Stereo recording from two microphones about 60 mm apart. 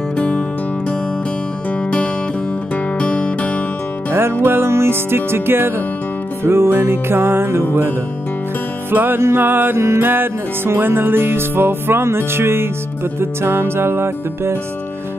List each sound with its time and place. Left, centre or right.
1.7 s music: left
4.1 s music: right
8.9 s music: right